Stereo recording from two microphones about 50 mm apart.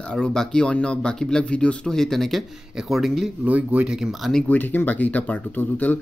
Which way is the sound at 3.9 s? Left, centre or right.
Centre.